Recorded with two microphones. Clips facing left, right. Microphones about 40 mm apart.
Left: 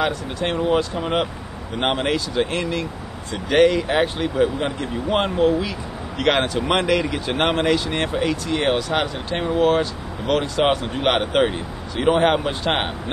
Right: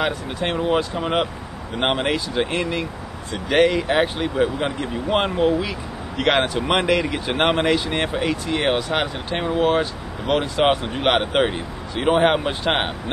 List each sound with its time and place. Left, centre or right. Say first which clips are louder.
0.0 s speech: left 1 dB; centre